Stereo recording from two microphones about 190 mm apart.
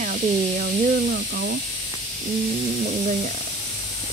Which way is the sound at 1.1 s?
60° right (ahead or behind).